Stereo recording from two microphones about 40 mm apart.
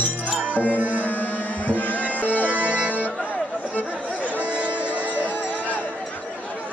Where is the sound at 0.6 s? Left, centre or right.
Right.